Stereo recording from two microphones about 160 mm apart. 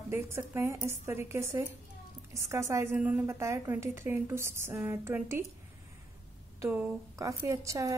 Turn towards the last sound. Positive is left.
turn(degrees=-20)  # may be behind; listen again after turning